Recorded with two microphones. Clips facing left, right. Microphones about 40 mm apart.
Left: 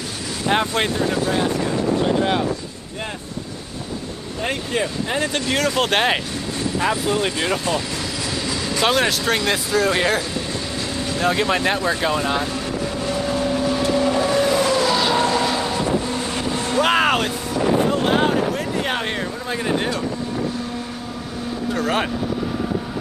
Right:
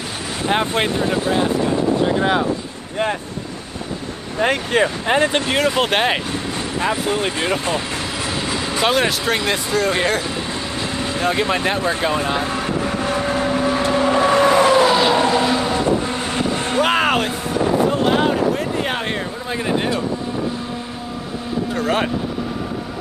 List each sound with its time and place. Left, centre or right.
0.5 s speech: centre
1.0 s speech: right
4.4 s speech: right
5.8 s speech: centre
7.1 s speech: right
8.8 s speech: centre
11.2 s speech: centre
12.5 s vehicle: right
15.0 s vehicle: centre
15.7 s vehicle: right
16.8 s a sound: centre
19.5 s a man's voice: centre
21.7 s speech: centre